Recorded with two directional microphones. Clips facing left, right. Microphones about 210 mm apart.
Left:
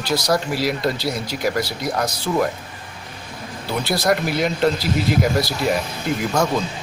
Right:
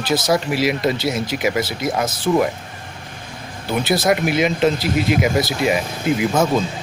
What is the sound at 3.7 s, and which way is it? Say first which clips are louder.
Speech: right 2 dB; centre (ahead or behind).